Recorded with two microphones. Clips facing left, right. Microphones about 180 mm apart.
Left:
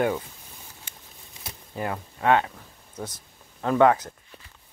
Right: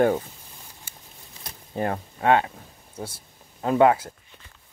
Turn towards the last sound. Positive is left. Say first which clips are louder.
# right 1 dB
turn(degrees=-20)  # may be behind; listen again after turning